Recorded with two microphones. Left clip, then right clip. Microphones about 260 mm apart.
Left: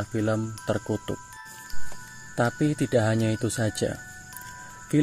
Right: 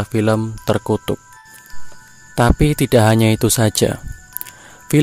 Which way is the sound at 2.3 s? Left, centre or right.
Right.